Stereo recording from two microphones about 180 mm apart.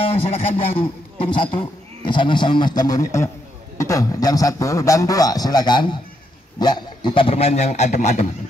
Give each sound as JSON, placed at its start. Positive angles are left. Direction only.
{"t": 0.0, "sound": "a man's voice", "side_deg": 30}